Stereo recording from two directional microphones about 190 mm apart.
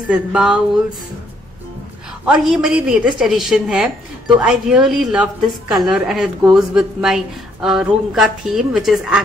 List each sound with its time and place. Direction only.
0.1 s a woman's voice: 5° right (ahead or behind)
2.2 s a woman's voice: 5° right (ahead or behind)